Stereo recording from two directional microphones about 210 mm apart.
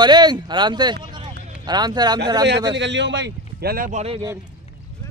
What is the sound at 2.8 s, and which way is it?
Speech, 60° right (ahead or behind).